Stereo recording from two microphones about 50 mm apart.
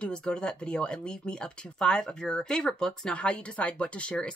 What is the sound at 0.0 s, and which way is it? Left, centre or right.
Speech, centre.